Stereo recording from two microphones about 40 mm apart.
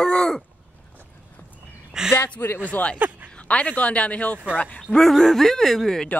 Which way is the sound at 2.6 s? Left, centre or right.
Left.